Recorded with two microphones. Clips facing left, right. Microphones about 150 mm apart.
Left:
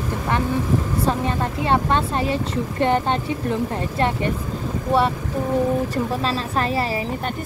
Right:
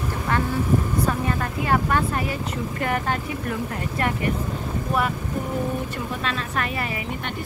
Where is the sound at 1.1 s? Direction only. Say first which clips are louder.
Left 3 dB; 25° left (ahead or behind).